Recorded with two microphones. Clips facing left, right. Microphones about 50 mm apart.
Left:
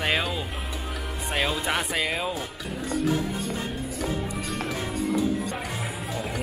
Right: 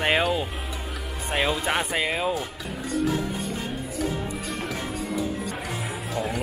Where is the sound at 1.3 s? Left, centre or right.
Centre.